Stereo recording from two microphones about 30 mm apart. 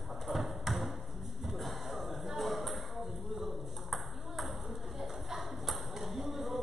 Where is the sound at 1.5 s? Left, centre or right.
Centre.